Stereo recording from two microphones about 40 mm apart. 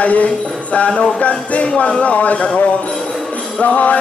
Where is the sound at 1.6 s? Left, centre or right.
Left.